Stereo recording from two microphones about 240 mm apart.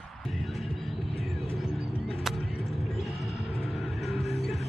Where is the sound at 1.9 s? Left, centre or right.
Left.